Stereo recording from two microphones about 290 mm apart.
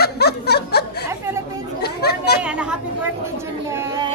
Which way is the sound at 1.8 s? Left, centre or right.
Left.